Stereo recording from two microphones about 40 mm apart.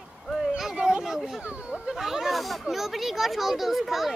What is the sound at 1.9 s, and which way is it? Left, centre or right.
Speech, centre.